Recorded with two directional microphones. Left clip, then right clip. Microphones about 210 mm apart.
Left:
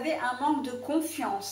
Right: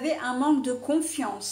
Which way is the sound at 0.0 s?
45° right (ahead or behind).